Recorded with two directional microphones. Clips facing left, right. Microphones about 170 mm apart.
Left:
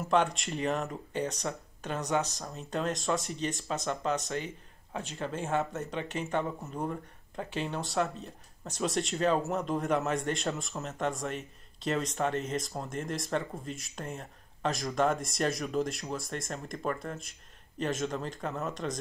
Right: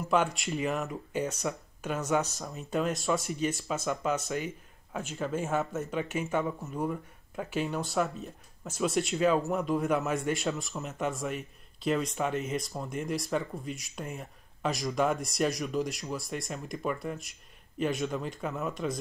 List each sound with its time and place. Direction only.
0.1 s a man's voice: 5° right (ahead or behind)
2.0 s speech: 15° left (ahead or behind)
2.5 s a man's voice: 5° right (ahead or behind)
4.9 s a man's voice: 5° right (ahead or behind)